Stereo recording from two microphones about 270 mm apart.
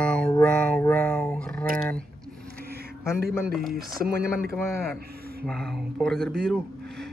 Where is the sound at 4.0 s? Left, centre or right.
Right.